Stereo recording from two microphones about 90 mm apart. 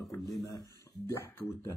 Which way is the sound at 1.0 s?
30° left (ahead or behind).